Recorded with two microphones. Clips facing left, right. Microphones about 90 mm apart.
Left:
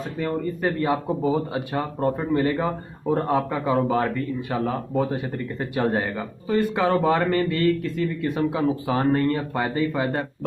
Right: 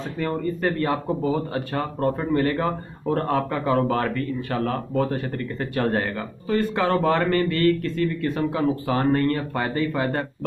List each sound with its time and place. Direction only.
0.2 s speech: 10° left (ahead or behind)